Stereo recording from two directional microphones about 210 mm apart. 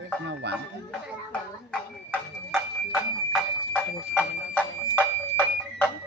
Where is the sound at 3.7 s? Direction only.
Centre (ahead or behind).